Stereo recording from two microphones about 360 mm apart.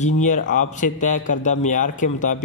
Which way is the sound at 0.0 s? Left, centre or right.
Left.